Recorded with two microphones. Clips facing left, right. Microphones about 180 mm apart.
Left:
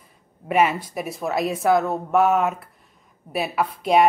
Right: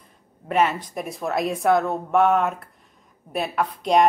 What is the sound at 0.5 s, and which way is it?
A woman's voice, 10° left (ahead or behind).